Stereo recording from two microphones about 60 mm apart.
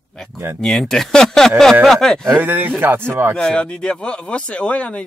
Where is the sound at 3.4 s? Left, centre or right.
Centre.